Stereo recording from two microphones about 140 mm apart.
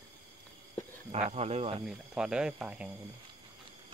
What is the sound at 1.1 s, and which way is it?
Speech, 50° right (ahead or behind).